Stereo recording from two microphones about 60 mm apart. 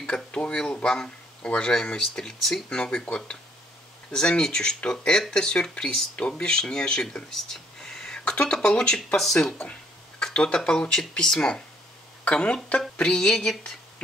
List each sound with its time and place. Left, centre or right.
0.0 s speech: centre
9.6 s a sound: left
10.2 s speech: centre